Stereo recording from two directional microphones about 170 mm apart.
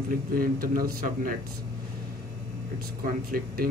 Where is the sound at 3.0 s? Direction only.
60° right (ahead or behind).